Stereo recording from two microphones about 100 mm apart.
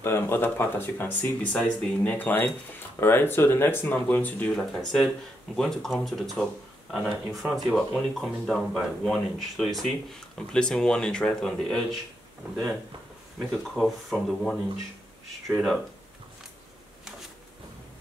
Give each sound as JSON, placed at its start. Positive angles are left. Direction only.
{"t": 0.0, "sound": "speech", "side_deg": 25}
{"t": 4.6, "sound": "speech", "side_deg": 0}
{"t": 13.5, "sound": "speech", "side_deg": 5}